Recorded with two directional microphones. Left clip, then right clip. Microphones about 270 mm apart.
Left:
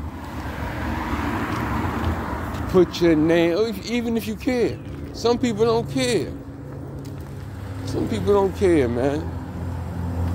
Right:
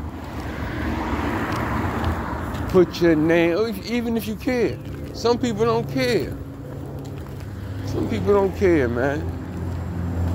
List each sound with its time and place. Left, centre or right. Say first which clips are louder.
0.6 s vehicle: right 1 dB; left
1.3 s vehicle: right 1 dB; left
2.7 s speech: even; centre
7.9 s speech: even; centre